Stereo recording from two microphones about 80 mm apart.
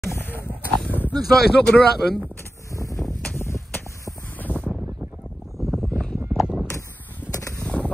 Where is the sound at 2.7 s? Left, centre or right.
Left.